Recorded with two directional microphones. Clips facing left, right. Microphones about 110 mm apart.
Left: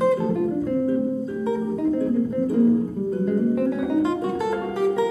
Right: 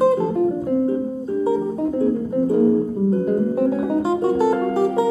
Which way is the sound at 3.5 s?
30° right (ahead or behind).